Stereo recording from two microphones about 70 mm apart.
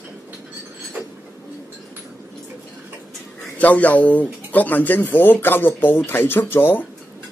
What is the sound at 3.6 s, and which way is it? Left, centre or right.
Speech, left.